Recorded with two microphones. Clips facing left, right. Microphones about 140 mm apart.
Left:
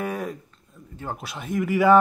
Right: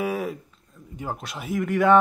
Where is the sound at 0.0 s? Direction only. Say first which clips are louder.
Right 2 dB; 5° right (ahead or behind).